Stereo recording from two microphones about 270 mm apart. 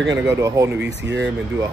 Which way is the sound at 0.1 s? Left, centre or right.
Centre.